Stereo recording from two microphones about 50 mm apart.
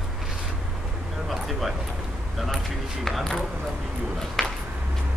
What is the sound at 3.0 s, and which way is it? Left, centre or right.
Speech, centre.